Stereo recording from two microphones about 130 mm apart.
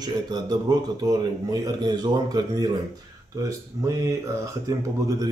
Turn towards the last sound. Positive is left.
turn(degrees=-25)  # may be behind; listen again after turning